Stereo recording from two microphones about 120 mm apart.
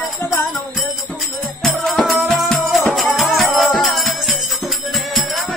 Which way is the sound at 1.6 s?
Centre (ahead or behind).